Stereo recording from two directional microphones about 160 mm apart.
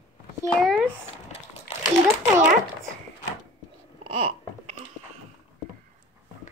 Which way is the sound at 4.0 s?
40° right (ahead or behind).